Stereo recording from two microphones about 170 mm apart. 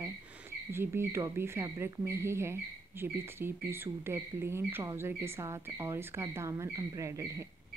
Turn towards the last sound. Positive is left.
turn(degrees=-15)  # may be behind; listen again after turning